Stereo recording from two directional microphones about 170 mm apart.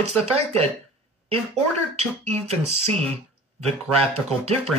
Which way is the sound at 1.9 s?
40° right (ahead or behind).